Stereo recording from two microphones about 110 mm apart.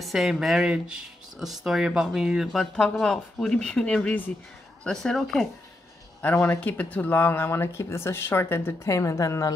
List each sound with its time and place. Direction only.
0.0 s speech: centre (ahead or behind)
6.2 s speech: 20° left (ahead or behind)